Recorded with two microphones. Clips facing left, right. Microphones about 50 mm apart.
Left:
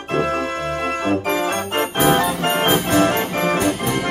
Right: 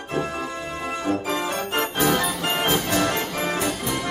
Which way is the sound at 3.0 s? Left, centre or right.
Left.